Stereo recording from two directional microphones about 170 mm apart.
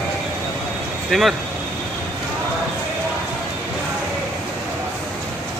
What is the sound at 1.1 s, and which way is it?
Speech, centre (ahead or behind).